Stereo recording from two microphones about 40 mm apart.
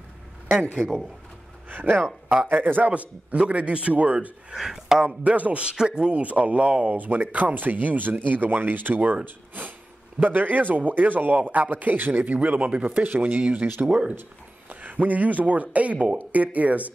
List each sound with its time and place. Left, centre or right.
0.8 s speech: right
1.7 s a man's voice: right
2.9 s a man's voice: right
4.6 s speech: centre
5.2 s a man's voice: right
5.6 s a man's voice: right
6.9 s a man's voice: right
10.2 s a man's voice: right
12.4 s a man's voice: right
12.8 s a man's voice: right
14.7 s a man's voice: right